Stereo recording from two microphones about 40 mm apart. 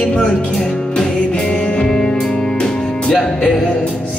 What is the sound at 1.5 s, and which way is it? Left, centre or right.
Music, left.